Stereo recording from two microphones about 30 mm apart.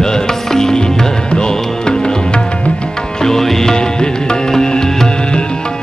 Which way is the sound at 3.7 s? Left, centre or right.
Left.